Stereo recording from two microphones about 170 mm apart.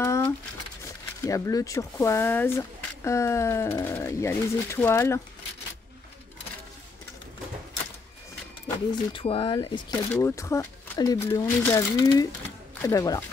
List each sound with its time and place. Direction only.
0.0 s a sound: 15° left (ahead or behind)
1.2 s speech: 20° left (ahead or behind)
8.6 s speech: 30° left (ahead or behind)